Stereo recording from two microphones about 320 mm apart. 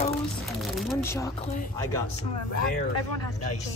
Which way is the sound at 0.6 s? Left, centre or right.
Centre.